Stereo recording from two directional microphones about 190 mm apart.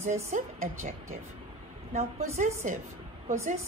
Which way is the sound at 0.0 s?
40° right (ahead or behind).